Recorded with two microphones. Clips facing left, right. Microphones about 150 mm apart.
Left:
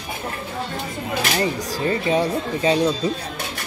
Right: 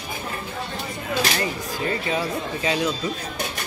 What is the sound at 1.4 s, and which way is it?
Speech, 30° left (ahead or behind).